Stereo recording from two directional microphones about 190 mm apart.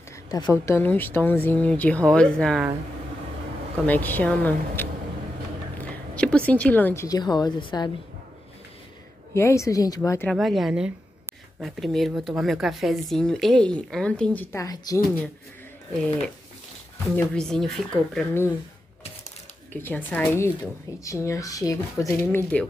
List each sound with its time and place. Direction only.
0.3 s speech: 15° left (ahead or behind)
3.8 s a woman's voice: 10° left (ahead or behind)
9.3 s speech: 15° left (ahead or behind)
10.3 s speech: centre (ahead or behind); by 15.0 s 20° left (ahead or behind)
17.1 s speech: 5° left (ahead or behind)
19.7 s speech: 10° left (ahead or behind)